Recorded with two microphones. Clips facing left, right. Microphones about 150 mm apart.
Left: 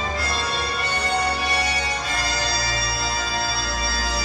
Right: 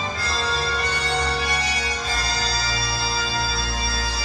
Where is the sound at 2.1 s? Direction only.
30° right (ahead or behind).